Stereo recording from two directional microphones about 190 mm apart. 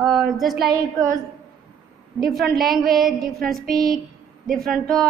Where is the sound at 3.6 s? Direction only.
50° right (ahead or behind).